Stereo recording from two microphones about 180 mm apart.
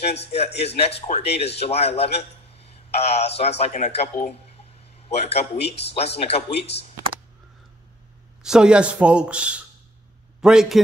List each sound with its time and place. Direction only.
0.3 s speech: 35° left (ahead or behind)
8.4 s speech: 5° right (ahead or behind)